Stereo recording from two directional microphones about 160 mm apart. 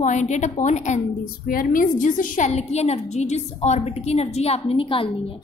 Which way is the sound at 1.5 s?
60° left (ahead or behind).